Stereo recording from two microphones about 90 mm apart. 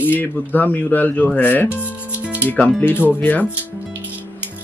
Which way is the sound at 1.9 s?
15° right (ahead or behind).